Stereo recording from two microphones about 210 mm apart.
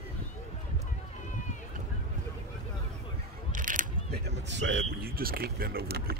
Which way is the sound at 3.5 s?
40° right (ahead or behind).